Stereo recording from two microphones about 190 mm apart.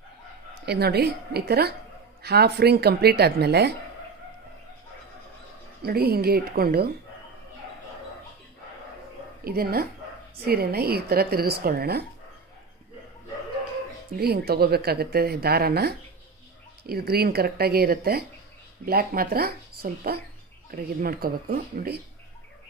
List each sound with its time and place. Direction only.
0.7 s speech: 55° right (ahead or behind)
5.9 s speech: 55° right (ahead or behind)
9.4 s speech: 55° right (ahead or behind)
14.1 s speech: 55° right (ahead or behind)